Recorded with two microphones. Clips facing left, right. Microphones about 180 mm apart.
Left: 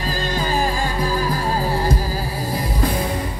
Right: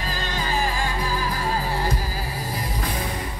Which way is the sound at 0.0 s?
35° left (ahead or behind).